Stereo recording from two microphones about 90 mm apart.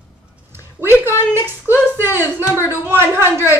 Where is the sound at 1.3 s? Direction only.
25° right (ahead or behind).